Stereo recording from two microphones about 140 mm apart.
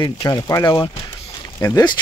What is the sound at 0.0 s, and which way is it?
Speech, 25° left (ahead or behind).